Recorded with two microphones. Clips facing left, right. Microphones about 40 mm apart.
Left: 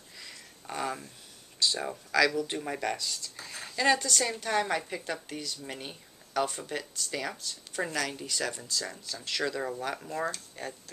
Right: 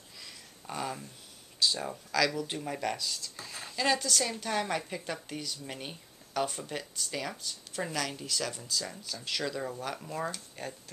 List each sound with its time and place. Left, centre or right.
0.2 s a sound: centre
1.8 s speech: centre
9.6 s speech: centre